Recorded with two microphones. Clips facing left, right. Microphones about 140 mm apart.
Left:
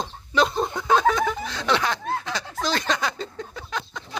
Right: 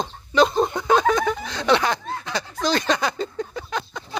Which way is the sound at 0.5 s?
20° right (ahead or behind).